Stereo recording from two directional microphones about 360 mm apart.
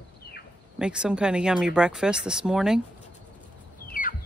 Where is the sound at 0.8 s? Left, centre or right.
Centre.